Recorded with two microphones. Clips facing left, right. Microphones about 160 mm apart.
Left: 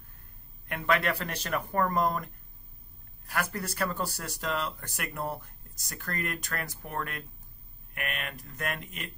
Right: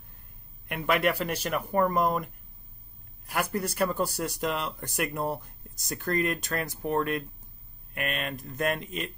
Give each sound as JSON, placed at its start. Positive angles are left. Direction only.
{"t": 0.7, "sound": "speech", "side_deg": -15}
{"t": 3.3, "sound": "speech", "side_deg": -15}